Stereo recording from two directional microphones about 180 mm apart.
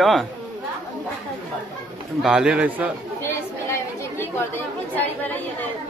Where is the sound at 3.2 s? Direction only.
15° left (ahead or behind).